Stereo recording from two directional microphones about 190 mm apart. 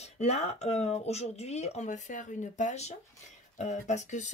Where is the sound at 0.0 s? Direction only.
35° left (ahead or behind).